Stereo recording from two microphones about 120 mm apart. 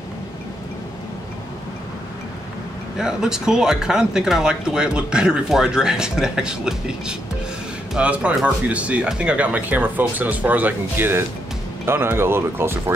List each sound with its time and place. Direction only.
3.0 s speech: 5° right (ahead or behind)